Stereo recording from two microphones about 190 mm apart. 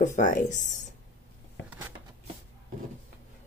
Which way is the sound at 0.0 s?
40° left (ahead or behind).